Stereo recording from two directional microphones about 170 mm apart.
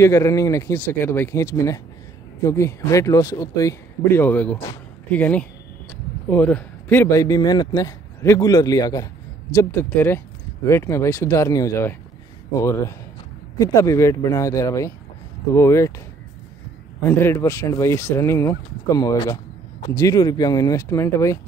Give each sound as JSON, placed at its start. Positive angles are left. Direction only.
{"t": 0.0, "sound": "a man's voice", "side_deg": 20}
{"t": 17.0, "sound": "a man's voice", "side_deg": 15}